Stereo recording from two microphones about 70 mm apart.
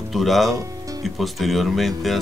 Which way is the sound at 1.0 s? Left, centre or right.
Centre.